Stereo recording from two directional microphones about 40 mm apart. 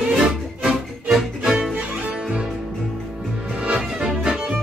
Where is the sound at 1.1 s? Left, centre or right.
Centre.